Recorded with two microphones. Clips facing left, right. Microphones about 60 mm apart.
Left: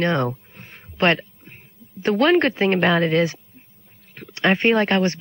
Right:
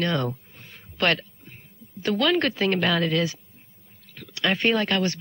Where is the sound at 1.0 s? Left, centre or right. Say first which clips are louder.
Left 5 dB; left.